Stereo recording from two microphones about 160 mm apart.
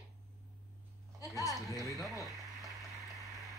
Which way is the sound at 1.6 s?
20° left (ahead or behind).